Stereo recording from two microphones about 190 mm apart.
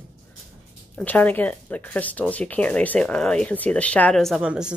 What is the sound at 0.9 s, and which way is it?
A woman's voice, 10° left (ahead or behind).